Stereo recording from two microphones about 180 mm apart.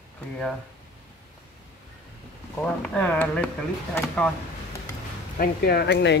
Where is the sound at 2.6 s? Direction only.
5° left (ahead or behind).